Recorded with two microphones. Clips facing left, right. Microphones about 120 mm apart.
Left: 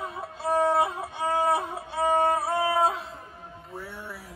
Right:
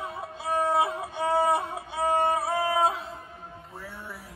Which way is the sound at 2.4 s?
Centre (ahead or behind).